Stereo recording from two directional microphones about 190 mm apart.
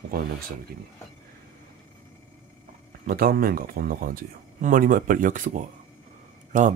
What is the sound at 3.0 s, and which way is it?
Speech, 50° right (ahead or behind).